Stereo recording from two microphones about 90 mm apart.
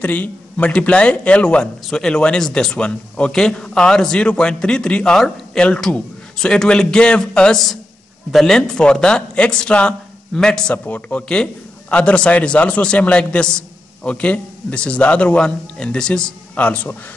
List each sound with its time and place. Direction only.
0.0 s a man's voice: 20° left (ahead or behind)